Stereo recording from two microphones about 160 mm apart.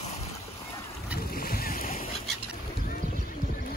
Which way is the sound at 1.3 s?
65° left (ahead or behind).